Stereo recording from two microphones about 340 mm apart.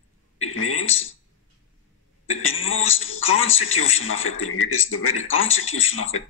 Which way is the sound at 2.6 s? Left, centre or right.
Left.